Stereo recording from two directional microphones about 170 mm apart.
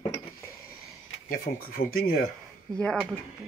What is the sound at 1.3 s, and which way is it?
Speech, 55° left (ahead or behind).